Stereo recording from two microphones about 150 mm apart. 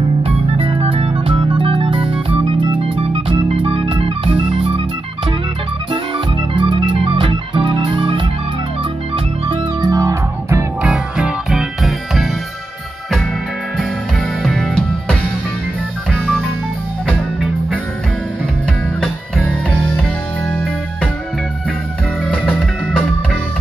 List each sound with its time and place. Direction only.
0.2 s organ: 40° right (ahead or behind)
5.9 s organ: 30° right (ahead or behind)
9.1 s music: 35° right (ahead or behind)
10.8 s music: 5° right (ahead or behind)
13.7 s music: 5° left (ahead or behind)
18.9 s music: 5° left (ahead or behind)
22.2 s music: 5° left (ahead or behind)